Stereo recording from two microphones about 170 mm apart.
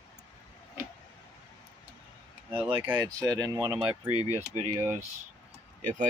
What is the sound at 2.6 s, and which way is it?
Speech, 35° right (ahead or behind).